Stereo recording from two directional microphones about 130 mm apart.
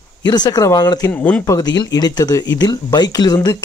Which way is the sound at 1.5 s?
30° left (ahead or behind).